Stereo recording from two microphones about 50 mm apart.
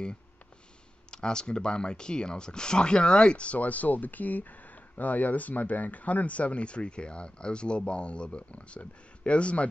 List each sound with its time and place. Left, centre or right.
1.1 s speech: centre